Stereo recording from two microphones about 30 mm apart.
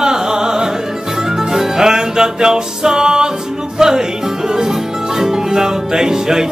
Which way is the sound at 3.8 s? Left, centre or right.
Centre.